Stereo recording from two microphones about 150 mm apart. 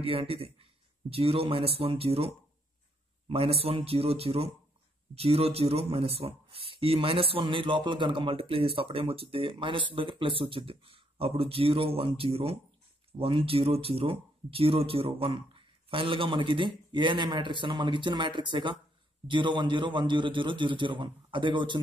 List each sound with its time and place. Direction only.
0.0 s a man's voice: 40° right (ahead or behind)